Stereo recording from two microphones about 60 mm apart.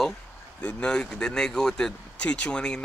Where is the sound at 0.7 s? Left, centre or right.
Centre.